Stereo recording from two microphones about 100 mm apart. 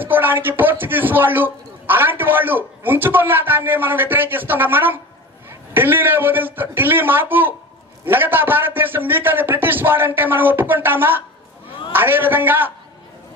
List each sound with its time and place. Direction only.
0.0 s speech: 20° right (ahead or behind)